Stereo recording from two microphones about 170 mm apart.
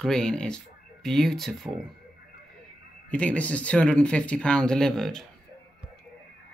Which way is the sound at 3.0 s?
10° left (ahead or behind).